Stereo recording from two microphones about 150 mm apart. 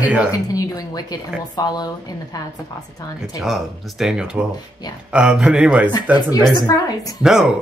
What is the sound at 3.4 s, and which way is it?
Speech, centre (ahead or behind).